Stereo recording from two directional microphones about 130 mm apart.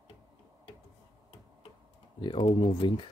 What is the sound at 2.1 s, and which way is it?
Speech, 40° left (ahead or behind).